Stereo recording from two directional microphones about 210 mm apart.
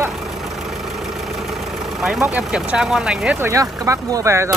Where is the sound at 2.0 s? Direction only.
5° right (ahead or behind).